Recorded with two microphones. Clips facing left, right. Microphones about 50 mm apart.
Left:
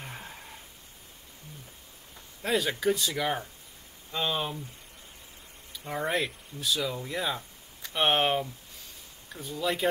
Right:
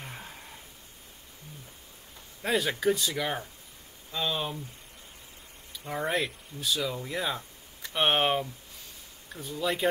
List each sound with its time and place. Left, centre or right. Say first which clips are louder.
0.0 s a sound: left 1 dB; centre
2.4 s speech: even; centre
4.2 s speech: left 1 dB; centre
5.7 s speech: even; centre
9.6 s speech: even; centre